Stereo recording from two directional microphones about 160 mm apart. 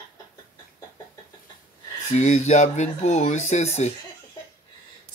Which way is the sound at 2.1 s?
45° left (ahead or behind).